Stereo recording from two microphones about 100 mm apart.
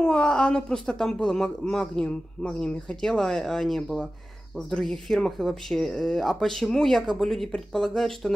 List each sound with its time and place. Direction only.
0.0 s a woman's voice: 10° left (ahead or behind)